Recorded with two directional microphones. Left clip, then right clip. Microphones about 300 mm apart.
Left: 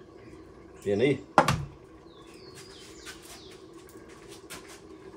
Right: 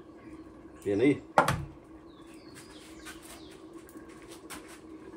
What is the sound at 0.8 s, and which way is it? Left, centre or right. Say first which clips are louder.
Speech: left 1 dB; centre.